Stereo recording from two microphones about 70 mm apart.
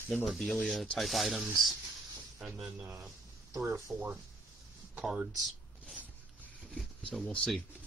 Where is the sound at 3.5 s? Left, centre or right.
Right.